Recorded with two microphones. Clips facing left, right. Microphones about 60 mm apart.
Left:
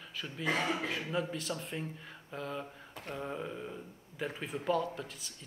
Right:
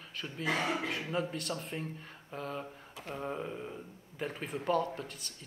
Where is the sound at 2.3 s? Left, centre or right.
Centre.